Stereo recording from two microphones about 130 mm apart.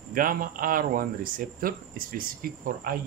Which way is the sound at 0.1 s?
90° right.